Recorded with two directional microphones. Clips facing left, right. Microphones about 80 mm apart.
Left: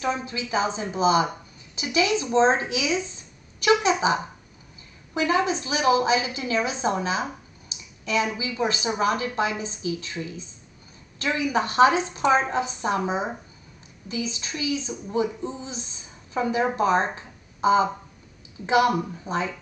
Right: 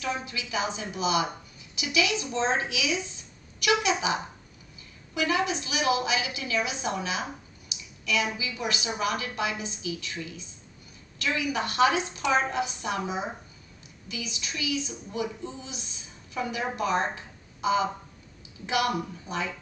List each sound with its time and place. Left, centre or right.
0.0 s a woman's voice: left
5.1 s a woman's voice: left
7.7 s a sound: left
8.4 s a woman's voice: left